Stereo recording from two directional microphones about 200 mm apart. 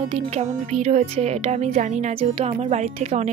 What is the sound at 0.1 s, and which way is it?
Speech, 30° right (ahead or behind).